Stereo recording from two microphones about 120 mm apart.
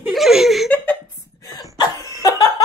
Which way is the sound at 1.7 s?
30° left (ahead or behind).